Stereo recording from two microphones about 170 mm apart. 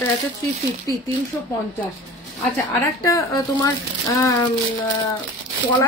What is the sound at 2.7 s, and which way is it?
A woman's voice, 20° left (ahead or behind).